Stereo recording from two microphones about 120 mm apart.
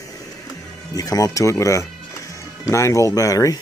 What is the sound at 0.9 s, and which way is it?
Speech, 30° left (ahead or behind).